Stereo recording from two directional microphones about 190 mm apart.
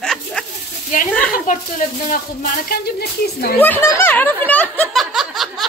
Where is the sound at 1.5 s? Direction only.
45° left (ahead or behind).